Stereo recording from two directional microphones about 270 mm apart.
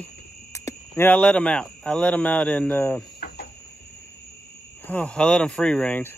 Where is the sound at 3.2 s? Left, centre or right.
Left.